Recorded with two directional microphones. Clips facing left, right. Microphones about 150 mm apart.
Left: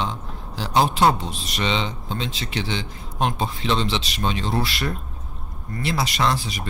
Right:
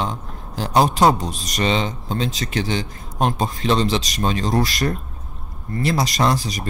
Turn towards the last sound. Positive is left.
turn(degrees=-40)  # may be behind; listen again after turning